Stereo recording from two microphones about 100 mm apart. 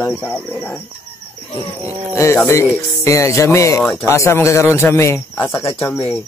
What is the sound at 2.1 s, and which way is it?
Speech, 25° left (ahead or behind).